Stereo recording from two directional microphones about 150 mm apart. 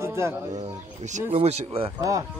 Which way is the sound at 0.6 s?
50° right (ahead or behind).